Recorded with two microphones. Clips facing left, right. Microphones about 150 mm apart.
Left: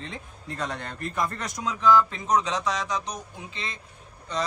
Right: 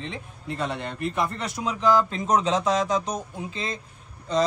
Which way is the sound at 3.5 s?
35° right (ahead or behind).